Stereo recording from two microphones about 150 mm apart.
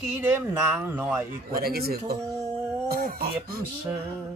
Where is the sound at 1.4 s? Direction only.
90° right.